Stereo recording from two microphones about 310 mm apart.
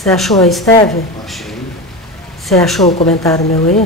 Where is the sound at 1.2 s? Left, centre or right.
Centre.